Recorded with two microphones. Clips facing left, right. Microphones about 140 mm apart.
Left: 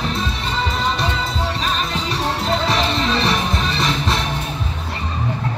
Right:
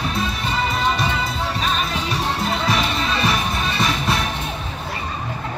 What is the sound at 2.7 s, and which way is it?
Music, 5° right (ahead or behind).